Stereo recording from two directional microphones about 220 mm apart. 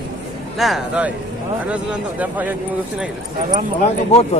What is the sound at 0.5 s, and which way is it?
Speech, centre (ahead or behind).